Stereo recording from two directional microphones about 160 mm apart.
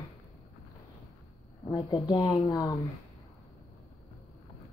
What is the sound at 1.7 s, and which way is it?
Speech, 30° left (ahead or behind).